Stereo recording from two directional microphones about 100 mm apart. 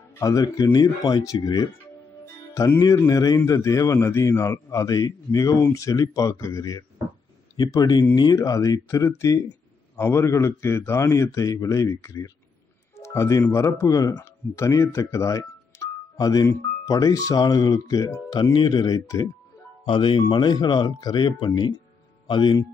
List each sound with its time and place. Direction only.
0.2 s a man's voice: 35° left (ahead or behind)
2.5 s speech: 25° left (ahead or behind)
3.1 s a man's voice: 35° left (ahead or behind)
19.9 s speech: 55° left (ahead or behind)